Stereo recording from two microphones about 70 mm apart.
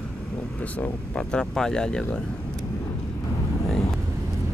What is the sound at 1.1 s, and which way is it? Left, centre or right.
Speech, centre.